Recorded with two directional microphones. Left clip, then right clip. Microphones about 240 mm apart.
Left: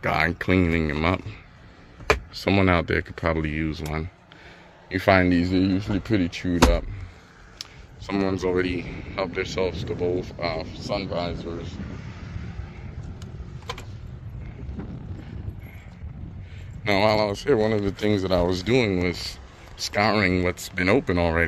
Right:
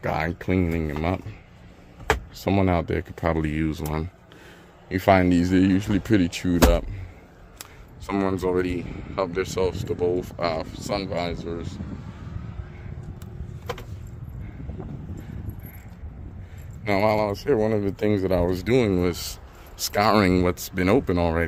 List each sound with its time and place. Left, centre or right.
0.0 s speech: centre
2.3 s speech: centre; by 6.8 s right
8.1 s speech: centre; by 11.8 s right
16.8 s speech: centre